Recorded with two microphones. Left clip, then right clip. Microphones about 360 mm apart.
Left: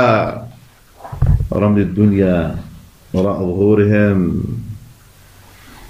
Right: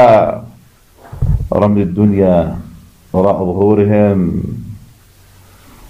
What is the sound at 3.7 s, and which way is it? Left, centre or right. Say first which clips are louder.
Speech: right 2 dB; centre.